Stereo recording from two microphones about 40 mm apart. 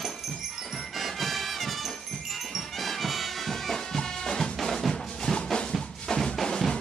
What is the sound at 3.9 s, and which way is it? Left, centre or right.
Music, centre.